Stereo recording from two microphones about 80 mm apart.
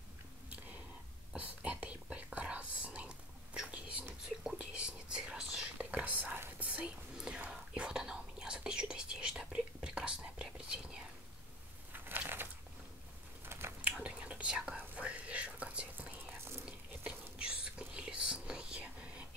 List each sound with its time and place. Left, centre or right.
1.3 s whispering: centre
11.9 s crushing: right
13.5 s a sound: right
13.7 s whispering: centre